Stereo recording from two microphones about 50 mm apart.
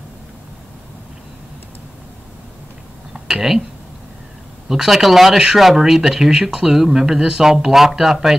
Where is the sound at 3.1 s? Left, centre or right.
Centre.